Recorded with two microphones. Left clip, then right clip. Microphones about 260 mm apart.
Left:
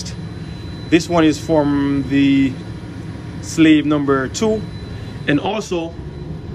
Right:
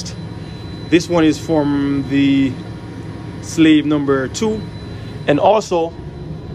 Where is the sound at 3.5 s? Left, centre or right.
Centre.